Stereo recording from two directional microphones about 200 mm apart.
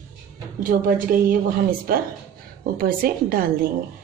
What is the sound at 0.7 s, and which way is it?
A woman's voice, 45° right (ahead or behind).